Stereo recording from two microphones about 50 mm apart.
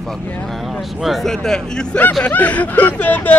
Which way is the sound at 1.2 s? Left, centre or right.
Centre.